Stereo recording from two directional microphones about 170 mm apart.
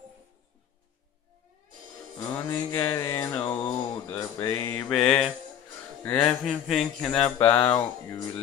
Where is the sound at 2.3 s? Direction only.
15° left (ahead or behind).